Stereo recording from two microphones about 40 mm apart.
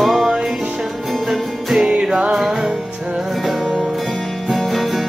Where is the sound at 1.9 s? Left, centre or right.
Centre.